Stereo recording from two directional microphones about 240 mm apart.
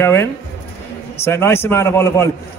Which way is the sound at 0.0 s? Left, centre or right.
Centre.